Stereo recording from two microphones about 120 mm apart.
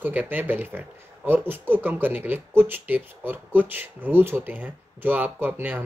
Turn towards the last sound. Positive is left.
turn(degrees=-15)  # may be behind; listen again after turning